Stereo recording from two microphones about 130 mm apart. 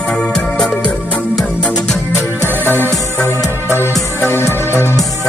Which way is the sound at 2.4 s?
15° right (ahead or behind).